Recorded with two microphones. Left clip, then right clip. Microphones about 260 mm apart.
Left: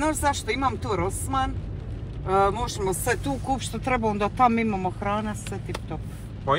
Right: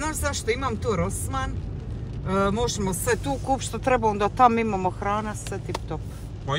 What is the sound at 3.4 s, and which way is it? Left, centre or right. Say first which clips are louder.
Speech: right 4 dB; centre.